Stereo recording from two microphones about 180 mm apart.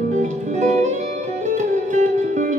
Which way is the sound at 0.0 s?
40° right (ahead or behind).